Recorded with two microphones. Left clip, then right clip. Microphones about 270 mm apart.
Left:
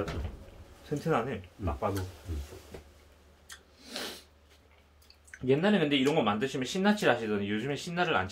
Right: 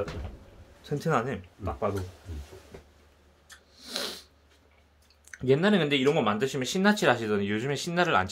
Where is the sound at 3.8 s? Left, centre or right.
Right.